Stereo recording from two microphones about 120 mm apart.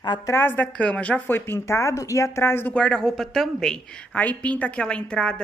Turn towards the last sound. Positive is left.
turn(degrees=5)  # may be behind; listen again after turning